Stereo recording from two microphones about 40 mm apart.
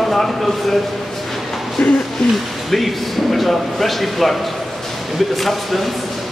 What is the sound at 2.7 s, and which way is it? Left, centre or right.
Speech, centre.